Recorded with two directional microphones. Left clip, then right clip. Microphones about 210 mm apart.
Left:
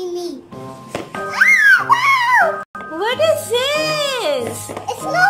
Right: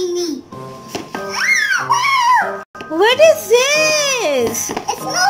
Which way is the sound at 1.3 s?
35° left (ahead or behind).